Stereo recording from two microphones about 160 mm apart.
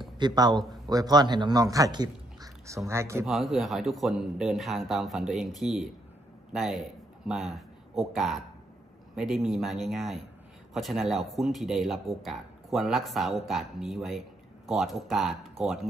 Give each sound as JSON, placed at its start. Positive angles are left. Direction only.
{"t": 0.2, "sound": "a man's voice", "side_deg": -25}
{"t": 3.3, "sound": "speech", "side_deg": 0}